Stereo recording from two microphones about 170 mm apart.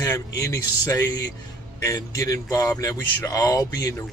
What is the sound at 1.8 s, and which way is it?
Speech, 20° left (ahead or behind).